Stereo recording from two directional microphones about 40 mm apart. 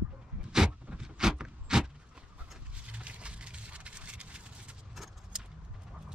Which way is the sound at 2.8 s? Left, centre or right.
Right.